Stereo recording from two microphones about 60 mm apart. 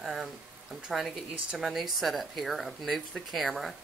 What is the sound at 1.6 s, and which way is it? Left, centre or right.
Speech, centre.